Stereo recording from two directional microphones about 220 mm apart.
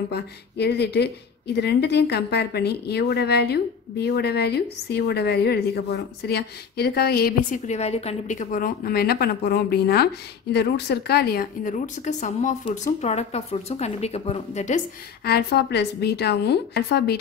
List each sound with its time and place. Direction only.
0.1 s a woman's voice: 50° left (ahead or behind); by 14.8 s 30° left (ahead or behind)
15.2 s a woman's voice: 50° left (ahead or behind)